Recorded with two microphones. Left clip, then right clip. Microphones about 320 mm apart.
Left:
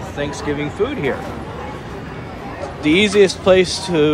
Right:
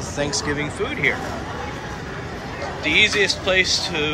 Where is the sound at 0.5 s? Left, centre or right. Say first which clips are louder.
Left 4 dB; centre.